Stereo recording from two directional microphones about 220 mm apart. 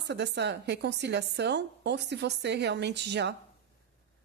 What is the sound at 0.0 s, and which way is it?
A woman's voice, 50° right (ahead or behind).